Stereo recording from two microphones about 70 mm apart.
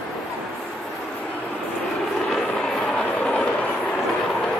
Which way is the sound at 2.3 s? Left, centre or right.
Centre.